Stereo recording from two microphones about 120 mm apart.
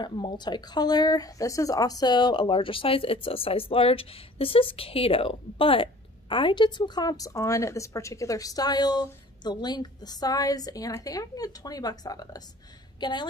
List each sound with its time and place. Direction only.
0.0 s speech: 40° left (ahead or behind)